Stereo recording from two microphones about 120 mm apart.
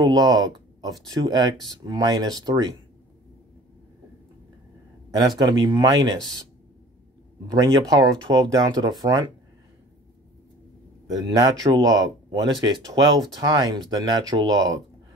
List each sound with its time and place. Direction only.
0.0 s speech: 35° right (ahead or behind)
5.1 s speech: 35° right (ahead or behind)
7.5 s speech: 30° right (ahead or behind)
11.1 s speech: 30° right (ahead or behind)